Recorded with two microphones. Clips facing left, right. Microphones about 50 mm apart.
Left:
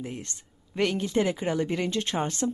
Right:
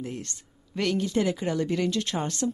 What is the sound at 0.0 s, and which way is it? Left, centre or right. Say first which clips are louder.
A woman's voice: right 1 dB; left.